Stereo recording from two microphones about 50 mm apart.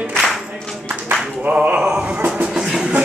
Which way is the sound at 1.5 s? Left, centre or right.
Right.